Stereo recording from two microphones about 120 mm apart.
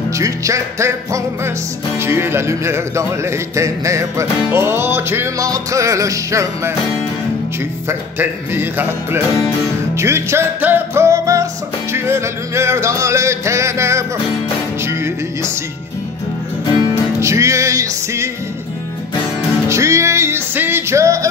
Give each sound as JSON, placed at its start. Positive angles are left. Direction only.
{"t": 0.2, "sound": "music", "side_deg": -25}
{"t": 8.2, "sound": "music", "side_deg": -15}
{"t": 16.8, "sound": "music", "side_deg": -25}
{"t": 19.7, "sound": "music", "side_deg": -25}